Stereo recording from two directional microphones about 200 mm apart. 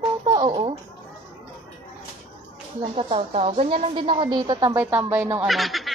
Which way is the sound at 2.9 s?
30° right (ahead or behind).